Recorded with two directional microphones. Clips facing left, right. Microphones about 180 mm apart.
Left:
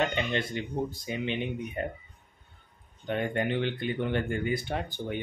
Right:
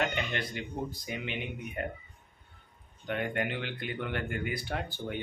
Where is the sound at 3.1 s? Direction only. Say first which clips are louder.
Left 4 dB; 30° left (ahead or behind).